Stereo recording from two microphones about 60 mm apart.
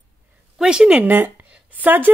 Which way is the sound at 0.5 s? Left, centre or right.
Centre.